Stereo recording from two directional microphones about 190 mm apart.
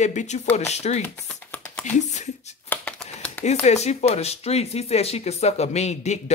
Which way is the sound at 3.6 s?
35° left (ahead or behind).